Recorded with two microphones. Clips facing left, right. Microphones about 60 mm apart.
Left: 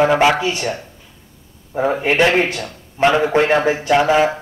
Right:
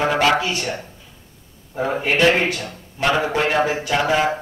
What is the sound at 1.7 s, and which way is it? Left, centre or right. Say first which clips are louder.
A man's voice: left 4 dB; left.